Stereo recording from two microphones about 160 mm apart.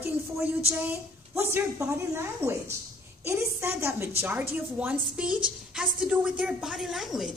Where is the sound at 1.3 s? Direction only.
15° right (ahead or behind).